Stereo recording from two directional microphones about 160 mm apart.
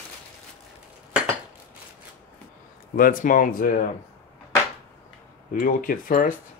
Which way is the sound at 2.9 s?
60° left (ahead or behind).